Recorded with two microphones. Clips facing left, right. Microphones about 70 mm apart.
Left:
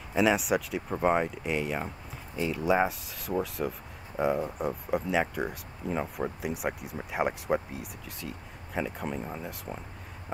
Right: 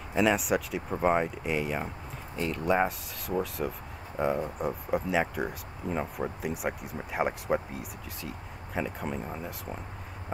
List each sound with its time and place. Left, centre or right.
0.1 s speech: centre